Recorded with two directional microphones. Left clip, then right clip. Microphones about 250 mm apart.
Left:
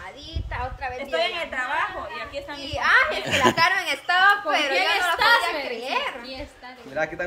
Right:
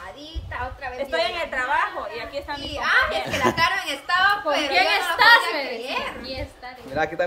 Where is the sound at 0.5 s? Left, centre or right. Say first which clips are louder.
Left 1 dB; centre.